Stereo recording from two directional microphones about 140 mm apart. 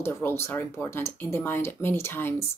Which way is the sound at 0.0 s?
20° left (ahead or behind).